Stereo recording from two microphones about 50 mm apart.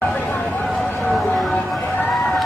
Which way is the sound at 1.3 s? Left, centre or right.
Centre.